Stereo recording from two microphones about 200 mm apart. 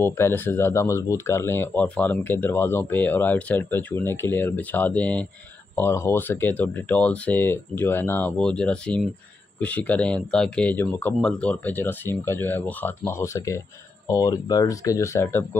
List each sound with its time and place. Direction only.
0.0 s speech: 10° left (ahead or behind)